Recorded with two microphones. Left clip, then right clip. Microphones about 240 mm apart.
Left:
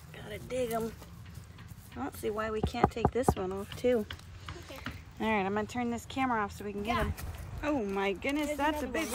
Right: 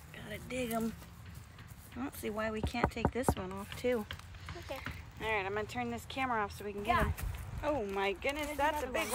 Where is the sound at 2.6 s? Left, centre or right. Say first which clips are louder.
Left 8 dB; centre.